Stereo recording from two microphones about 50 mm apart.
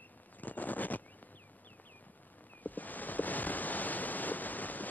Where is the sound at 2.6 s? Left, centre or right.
Left.